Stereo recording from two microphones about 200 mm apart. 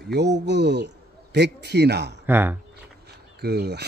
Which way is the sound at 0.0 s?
55° right (ahead or behind).